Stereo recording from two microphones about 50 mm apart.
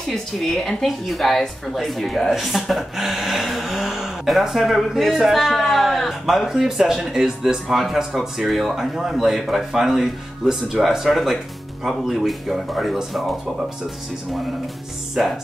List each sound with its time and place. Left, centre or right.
0.4 s a woman's voice: centre
15.2 s speech: centre